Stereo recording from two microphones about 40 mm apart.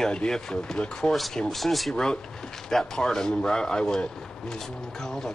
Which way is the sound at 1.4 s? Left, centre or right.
Centre.